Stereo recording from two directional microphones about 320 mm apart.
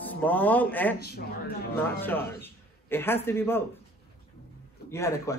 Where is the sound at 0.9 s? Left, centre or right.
Left.